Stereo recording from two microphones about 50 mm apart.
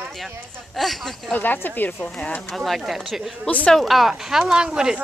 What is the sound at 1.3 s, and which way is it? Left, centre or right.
Speech, left.